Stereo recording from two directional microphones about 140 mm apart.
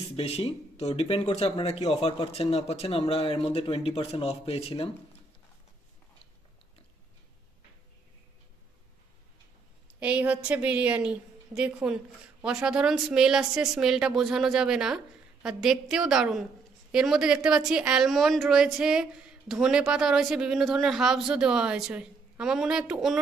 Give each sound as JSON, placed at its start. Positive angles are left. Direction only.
{"t": 0.1, "sound": "speech", "side_deg": 45}
{"t": 9.9, "sound": "a woman's voice", "side_deg": -10}